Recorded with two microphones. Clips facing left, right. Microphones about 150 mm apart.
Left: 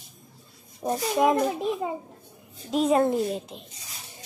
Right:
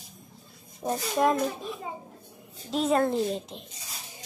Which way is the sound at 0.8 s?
10° left (ahead or behind).